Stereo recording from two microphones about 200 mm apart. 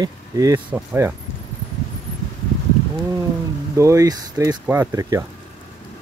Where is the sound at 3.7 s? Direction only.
15° right (ahead or behind).